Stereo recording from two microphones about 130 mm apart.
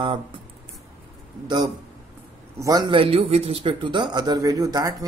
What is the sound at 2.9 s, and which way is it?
Speech, 45° right (ahead or behind).